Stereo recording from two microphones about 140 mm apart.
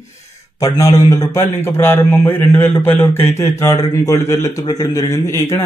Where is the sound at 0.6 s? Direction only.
25° left (ahead or behind).